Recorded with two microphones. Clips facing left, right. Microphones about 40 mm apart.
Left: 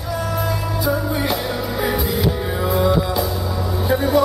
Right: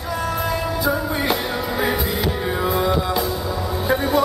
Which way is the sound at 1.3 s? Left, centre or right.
Centre.